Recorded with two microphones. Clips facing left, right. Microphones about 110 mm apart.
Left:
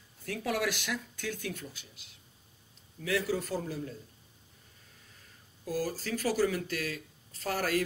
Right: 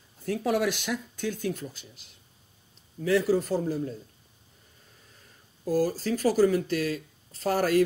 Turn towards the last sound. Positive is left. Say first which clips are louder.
# right 7 dB
turn(degrees=-35)  # may be behind; listen again after turning